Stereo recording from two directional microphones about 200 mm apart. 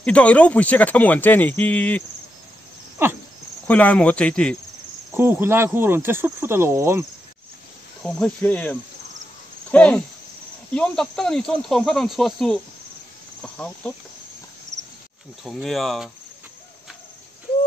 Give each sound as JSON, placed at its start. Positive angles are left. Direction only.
{"t": 0.0, "sound": "speech", "side_deg": 5}
{"t": 3.0, "sound": "cricket", "side_deg": -10}
{"t": 3.6, "sound": "speech", "side_deg": 5}
{"t": 5.1, "sound": "cricket", "side_deg": -10}
{"t": 8.0, "sound": "speech", "side_deg": 5}
{"t": 9.7, "sound": "cricket", "side_deg": 5}
{"t": 10.7, "sound": "speech", "side_deg": 5}
{"t": 13.4, "sound": "cricket", "side_deg": 5}
{"t": 15.4, "sound": "speech", "side_deg": 0}